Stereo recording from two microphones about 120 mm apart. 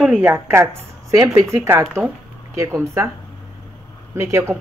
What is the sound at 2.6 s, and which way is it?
Speech, 25° right (ahead or behind).